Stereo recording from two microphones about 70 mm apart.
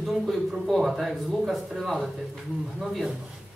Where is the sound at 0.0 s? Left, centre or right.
Centre.